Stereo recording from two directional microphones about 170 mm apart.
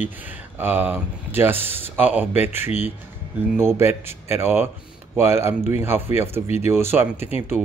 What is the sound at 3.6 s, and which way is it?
Speech, 15° right (ahead or behind).